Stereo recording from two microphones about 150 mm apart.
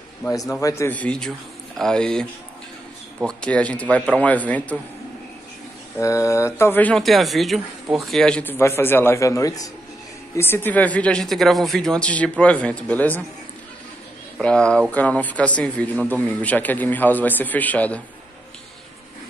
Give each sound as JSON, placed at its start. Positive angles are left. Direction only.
{"t": 0.3, "sound": "speech", "side_deg": 20}
{"t": 3.3, "sound": "speech", "side_deg": 5}
{"t": 5.9, "sound": "speech", "side_deg": 20}
{"t": 14.4, "sound": "speech", "side_deg": 5}